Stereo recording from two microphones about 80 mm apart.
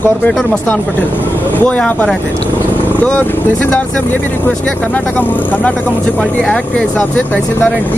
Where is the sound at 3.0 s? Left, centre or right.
Centre.